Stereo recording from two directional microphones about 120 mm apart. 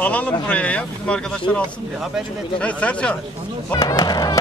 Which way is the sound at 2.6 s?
10° left (ahead or behind).